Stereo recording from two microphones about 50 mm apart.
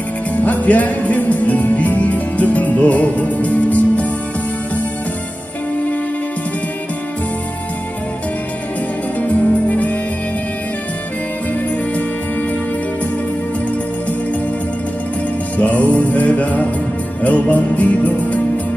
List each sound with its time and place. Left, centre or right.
0.4 s music: left
9.3 s music: left
15.5 s music: left